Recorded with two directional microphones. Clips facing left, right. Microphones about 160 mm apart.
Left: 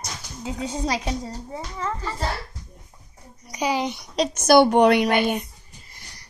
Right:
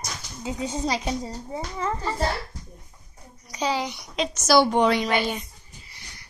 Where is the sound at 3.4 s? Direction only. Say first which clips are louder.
Left 2 dB; 15° left (ahead or behind).